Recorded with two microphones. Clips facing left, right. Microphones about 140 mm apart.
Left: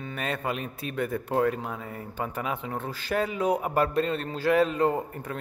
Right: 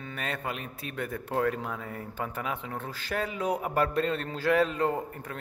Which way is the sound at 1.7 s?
15° left (ahead or behind).